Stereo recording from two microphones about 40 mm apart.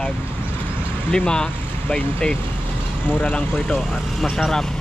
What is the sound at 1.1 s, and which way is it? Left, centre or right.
Speech, centre.